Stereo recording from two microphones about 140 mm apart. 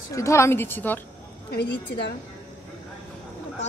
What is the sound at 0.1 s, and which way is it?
Speech, 20° left (ahead or behind).